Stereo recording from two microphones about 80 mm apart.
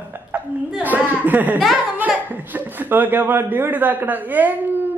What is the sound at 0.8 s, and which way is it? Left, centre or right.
Speech, right.